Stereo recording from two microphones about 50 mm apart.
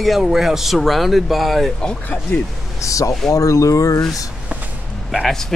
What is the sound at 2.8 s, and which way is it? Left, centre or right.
Speech, left.